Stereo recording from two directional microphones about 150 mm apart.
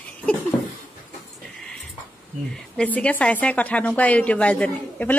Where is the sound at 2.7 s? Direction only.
10° left (ahead or behind).